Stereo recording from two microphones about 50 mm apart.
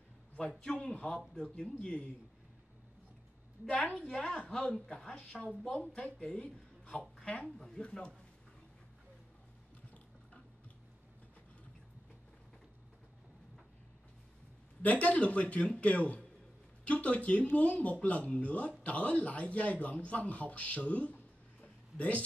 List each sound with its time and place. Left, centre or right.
0.4 s speech: centre
3.6 s speech: centre
7.4 s speech: centre
14.8 s a man's voice: left